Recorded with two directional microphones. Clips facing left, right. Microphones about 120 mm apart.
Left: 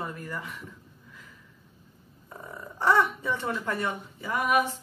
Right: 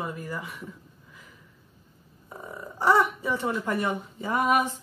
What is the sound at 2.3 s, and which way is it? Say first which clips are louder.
Speech: right 2 dB; 10° right (ahead or behind).